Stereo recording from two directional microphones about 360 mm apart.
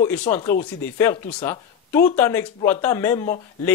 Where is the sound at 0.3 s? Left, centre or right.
Centre.